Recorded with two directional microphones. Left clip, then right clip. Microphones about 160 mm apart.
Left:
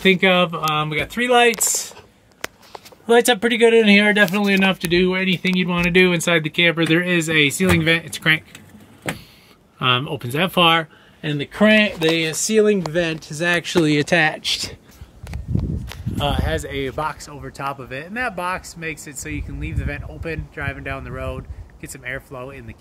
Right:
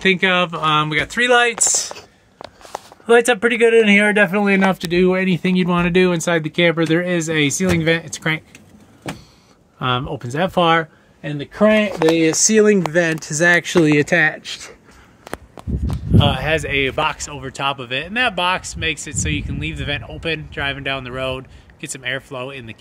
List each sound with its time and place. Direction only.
0.0 s speech: 5° left (ahead or behind)
3.1 s speech: 10° left (ahead or behind)
4.4 s speech: 15° right (ahead or behind)
4.9 s speech: 40° right (ahead or behind)
5.8 s speech: 15° right (ahead or behind)
6.2 s speech: centre (ahead or behind)
9.8 s speech: centre (ahead or behind)
11.1 s speech: 20° left (ahead or behind)
12.2 s speech: 25° right (ahead or behind)
13.8 s speech: 5° right (ahead or behind)
16.2 s speech: 30° right (ahead or behind)